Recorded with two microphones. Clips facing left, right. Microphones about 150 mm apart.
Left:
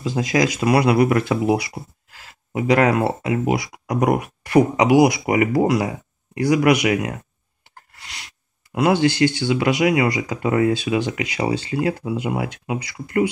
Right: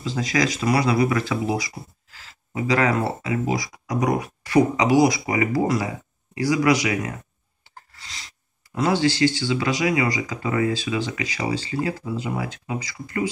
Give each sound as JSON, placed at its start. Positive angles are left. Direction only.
{"t": 0.7, "sound": "speech", "side_deg": 60}
{"t": 2.5, "sound": "speech", "side_deg": 60}
{"t": 7.9, "sound": "a sound", "side_deg": 60}
{"t": 8.7, "sound": "speech", "side_deg": 55}